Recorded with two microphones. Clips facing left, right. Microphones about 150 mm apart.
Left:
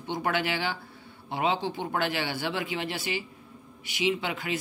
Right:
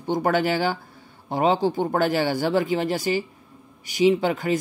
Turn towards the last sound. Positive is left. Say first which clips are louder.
# right 9 dB
turn(degrees=-40)  # may be behind; listen again after turning